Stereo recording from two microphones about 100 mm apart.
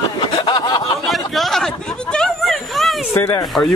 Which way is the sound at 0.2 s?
45° left (ahead or behind).